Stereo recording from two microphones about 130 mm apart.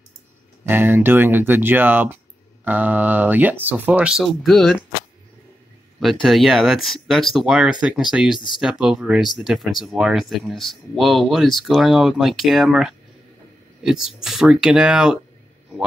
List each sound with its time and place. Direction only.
0.7 s speech: 15° right (ahead or behind); by 4.7 s centre (ahead or behind)
6.2 s speech: centre (ahead or behind)